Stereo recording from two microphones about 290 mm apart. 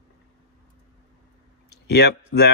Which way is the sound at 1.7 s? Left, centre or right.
Left.